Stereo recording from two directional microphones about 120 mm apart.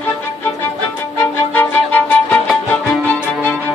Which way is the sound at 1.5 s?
15° left (ahead or behind).